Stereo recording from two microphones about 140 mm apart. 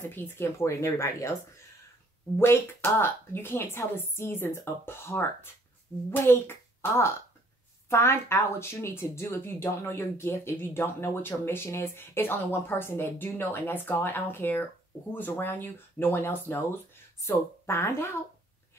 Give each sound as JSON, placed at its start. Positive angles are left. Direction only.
{"t": 0.0, "sound": "speech", "side_deg": 15}
{"t": 2.3, "sound": "speech", "side_deg": 20}